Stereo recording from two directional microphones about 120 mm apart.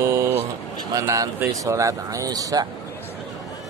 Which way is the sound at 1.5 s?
25° right (ahead or behind).